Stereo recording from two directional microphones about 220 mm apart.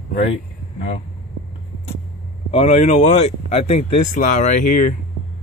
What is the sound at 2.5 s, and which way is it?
Speech, 30° left (ahead or behind).